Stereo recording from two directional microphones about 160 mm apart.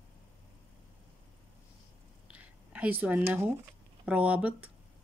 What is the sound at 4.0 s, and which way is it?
Speech, 10° right (ahead or behind).